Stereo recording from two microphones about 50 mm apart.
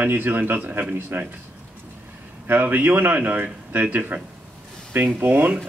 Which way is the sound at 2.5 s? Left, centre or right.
Right.